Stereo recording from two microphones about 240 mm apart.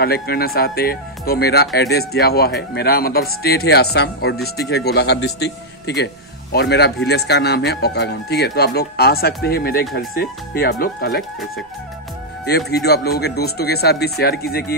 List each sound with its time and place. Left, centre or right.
0.0 s speech: left
12.4 s speech: left